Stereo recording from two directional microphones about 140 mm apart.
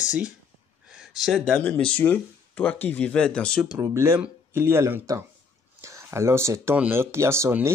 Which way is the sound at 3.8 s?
20° right (ahead or behind).